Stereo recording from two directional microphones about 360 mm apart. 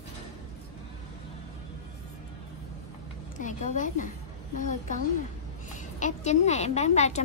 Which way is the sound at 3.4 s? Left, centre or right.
Left.